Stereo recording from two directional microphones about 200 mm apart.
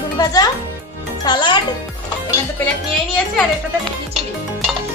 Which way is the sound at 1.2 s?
20° left (ahead or behind).